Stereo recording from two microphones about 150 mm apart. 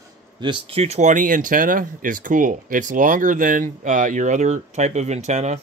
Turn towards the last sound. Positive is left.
turn(degrees=-50)  # may be behind; listen again after turning